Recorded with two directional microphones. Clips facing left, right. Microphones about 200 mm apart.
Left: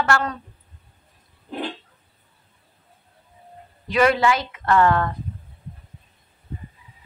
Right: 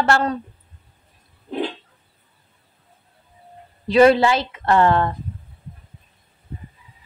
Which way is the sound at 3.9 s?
30° right (ahead or behind).